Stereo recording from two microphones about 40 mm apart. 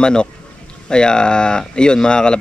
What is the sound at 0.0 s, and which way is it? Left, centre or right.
Speech, left.